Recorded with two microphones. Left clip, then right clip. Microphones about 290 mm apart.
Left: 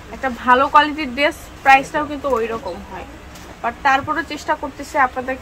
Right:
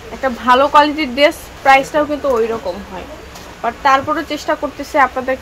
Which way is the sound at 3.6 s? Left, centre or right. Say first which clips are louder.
Right 4 dB; right.